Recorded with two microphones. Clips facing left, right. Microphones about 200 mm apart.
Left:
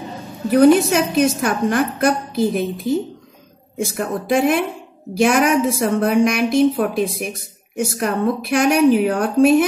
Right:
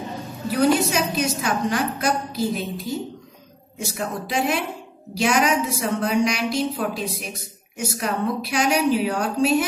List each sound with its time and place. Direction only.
0.5 s a woman's voice: 55° left (ahead or behind)